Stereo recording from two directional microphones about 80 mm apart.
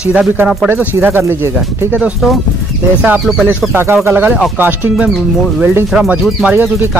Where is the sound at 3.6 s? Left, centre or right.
Right.